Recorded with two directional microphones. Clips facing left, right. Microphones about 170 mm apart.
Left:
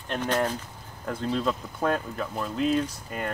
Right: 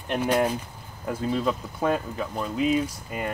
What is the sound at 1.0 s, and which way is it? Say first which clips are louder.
Speech: right 2 dB; 5° right (ahead or behind).